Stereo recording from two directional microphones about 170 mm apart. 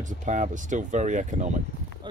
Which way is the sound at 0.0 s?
50° right (ahead or behind).